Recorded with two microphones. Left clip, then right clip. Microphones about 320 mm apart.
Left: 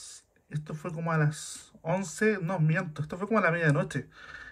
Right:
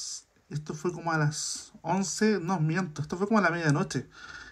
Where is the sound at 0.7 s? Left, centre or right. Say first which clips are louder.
Right 3 dB; centre.